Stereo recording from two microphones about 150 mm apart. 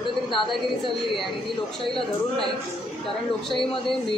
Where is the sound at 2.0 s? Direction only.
Centre (ahead or behind).